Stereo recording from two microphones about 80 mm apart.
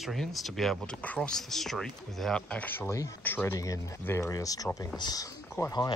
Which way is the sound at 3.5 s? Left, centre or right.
Left.